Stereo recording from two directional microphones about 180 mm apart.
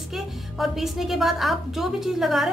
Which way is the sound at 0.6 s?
Centre (ahead or behind).